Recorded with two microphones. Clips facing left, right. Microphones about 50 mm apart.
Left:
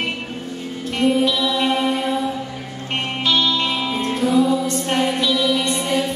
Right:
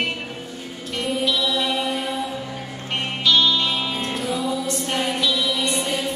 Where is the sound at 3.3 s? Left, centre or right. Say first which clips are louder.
Right 1 dB; centre.